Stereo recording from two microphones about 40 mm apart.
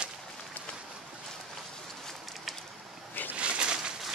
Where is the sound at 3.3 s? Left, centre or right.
Right.